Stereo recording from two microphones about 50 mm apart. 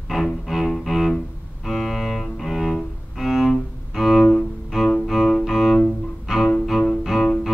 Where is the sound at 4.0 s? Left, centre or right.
Centre.